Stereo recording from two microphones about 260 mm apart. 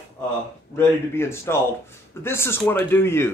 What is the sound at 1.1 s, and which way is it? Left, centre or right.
Speech, centre.